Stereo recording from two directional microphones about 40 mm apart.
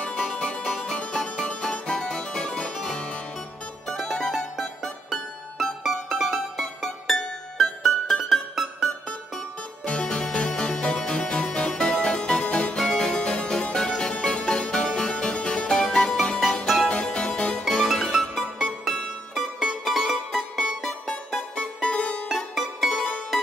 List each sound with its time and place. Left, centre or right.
0.2 s music: left
3.8 s music: centre
6.0 s music: centre
9.8 s music: left
12.7 s music: centre
13.1 s music: left
16.6 s music: centre
16.9 s music: left
17.6 s music: centre
19.3 s music: centre
21.8 s music: left
22.3 s music: centre